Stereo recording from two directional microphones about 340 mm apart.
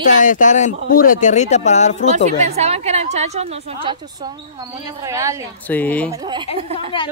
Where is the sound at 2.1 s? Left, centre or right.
Centre.